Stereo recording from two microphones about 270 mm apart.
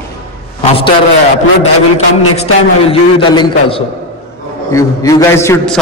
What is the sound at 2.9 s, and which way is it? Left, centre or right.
A man's voice, centre.